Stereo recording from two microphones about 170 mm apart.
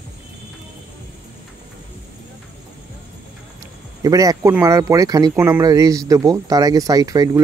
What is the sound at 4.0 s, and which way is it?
Speech, 20° right (ahead or behind).